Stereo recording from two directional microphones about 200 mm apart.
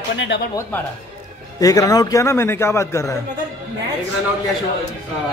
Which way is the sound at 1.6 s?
15° left (ahead or behind).